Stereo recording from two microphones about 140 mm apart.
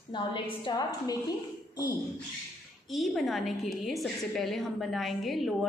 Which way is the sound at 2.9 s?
Centre (ahead or behind).